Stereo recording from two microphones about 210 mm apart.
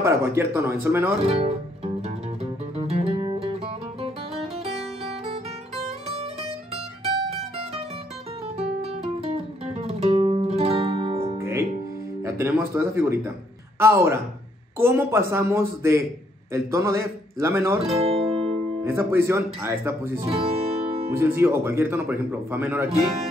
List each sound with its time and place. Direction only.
0.0 s a man's voice: 10° right (ahead or behind)
1.2 s speech: 30° right (ahead or behind)
2.8 s music: 25° right (ahead or behind)
7.2 s mandolin: 30° right (ahead or behind)
8.5 s music: 30° right (ahead or behind)
11.3 s music: 10° right (ahead or behind)
12.4 s a man's voice: 15° right (ahead or behind)
18.0 s music: 30° right (ahead or behind)
18.9 s a man's voice: 10° right (ahead or behind)
20.2 s music: 30° right (ahead or behind)
21.2 s a man's voice: 10° right (ahead or behind)